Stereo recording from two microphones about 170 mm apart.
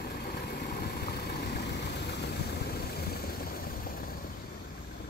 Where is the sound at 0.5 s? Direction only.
70° left (ahead or behind).